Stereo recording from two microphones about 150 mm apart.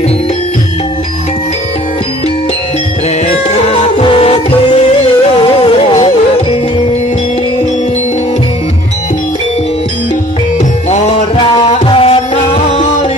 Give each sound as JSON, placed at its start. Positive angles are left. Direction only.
{"t": 3.3, "sound": "music", "side_deg": 45}
{"t": 4.0, "sound": "music", "side_deg": 35}
{"t": 10.9, "sound": "music", "side_deg": 50}